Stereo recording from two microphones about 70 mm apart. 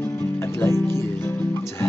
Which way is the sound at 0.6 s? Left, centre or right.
Left.